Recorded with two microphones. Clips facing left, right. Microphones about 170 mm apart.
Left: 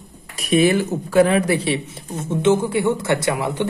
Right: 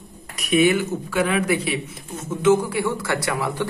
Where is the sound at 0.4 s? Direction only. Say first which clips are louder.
Left 2 dB; 35° left (ahead or behind).